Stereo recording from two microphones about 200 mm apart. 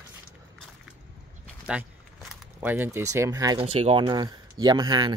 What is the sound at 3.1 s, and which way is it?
Speech, 15° right (ahead or behind).